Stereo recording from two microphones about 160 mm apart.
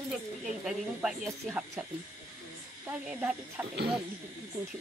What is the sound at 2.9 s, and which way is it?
Speech, 10° right (ahead or behind).